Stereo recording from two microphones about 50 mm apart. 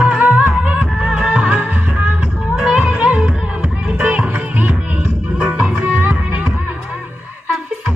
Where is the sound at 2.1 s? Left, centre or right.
Centre; by 4.8 s right.